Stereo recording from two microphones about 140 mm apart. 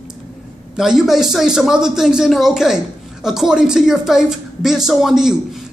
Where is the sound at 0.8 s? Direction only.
5° right (ahead or behind).